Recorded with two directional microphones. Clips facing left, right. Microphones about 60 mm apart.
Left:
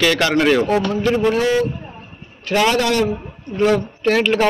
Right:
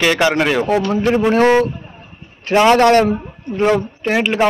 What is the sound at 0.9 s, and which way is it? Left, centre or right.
Speech, right.